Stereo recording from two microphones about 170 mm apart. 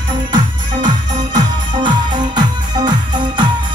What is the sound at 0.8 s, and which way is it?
Music, 25° right (ahead or behind).